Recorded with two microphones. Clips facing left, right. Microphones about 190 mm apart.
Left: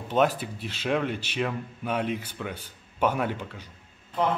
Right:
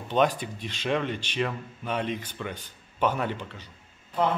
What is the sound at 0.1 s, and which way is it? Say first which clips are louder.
Speech: even; 5° left (ahead or behind).